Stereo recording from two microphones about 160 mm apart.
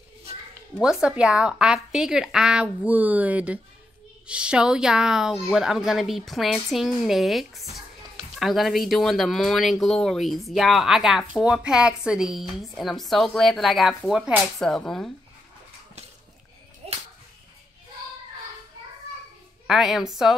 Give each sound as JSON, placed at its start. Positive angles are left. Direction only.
{"t": 0.7, "sound": "speech", "side_deg": -5}
{"t": 19.7, "sound": "speech", "side_deg": 0}